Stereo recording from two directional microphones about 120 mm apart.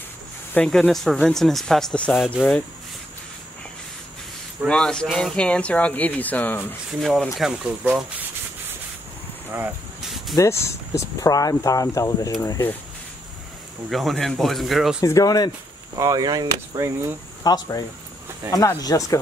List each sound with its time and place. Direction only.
0.7 s speech: 5° left (ahead or behind)
4.6 s speech: 5° left (ahead or behind)
7.0 s speech: centre (ahead or behind)
10.0 s a sound: centre (ahead or behind)
10.3 s speech: 25° left (ahead or behind)
13.8 s speech: centre (ahead or behind)
15.0 s speech: 25° left (ahead or behind)
16.0 s speech: 30° right (ahead or behind)
17.4 s speech: 35° left (ahead or behind)